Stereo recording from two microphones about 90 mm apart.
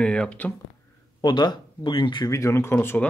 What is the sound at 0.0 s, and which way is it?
Speech, 10° left (ahead or behind).